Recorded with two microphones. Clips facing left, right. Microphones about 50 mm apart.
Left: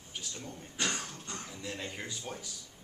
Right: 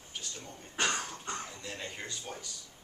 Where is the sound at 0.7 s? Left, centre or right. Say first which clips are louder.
Right 3 dB; right.